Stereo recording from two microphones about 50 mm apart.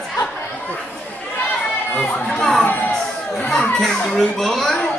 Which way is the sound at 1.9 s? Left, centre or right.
Left.